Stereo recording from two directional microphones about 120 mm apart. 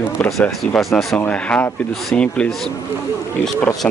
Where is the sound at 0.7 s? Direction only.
Centre (ahead or behind).